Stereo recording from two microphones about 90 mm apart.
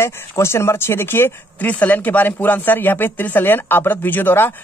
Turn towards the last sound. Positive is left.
turn(degrees=20)  # may be behind; listen again after turning